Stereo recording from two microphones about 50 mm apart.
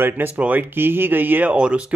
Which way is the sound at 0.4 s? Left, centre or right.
Right.